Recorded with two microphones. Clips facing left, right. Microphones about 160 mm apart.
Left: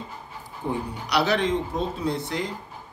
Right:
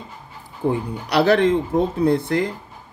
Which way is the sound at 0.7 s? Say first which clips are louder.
Right 6 dB; 55° right (ahead or behind).